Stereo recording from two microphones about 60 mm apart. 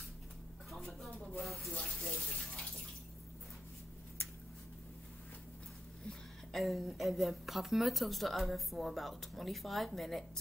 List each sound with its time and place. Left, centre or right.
0.7 s a sound: centre
2.0 s bathtub: centre
6.0 s a woman's voice: centre